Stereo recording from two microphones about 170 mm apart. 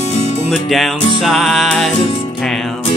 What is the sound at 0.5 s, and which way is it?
Music, centre (ahead or behind).